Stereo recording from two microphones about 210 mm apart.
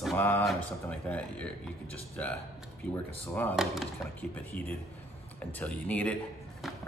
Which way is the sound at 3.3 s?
5° left (ahead or behind).